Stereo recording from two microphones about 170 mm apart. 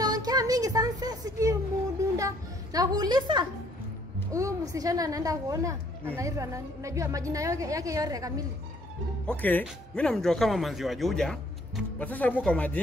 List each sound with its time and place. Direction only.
0.0 s a sound: 25° right (ahead or behind)
4.3 s a woman's voice: 20° right (ahead or behind)
9.3 s speech: 10° left (ahead or behind)